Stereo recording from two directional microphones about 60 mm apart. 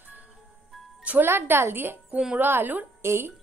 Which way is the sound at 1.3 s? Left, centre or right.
Right.